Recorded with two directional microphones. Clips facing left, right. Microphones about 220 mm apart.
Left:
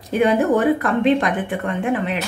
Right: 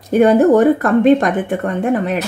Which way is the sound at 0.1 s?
45° right (ahead or behind).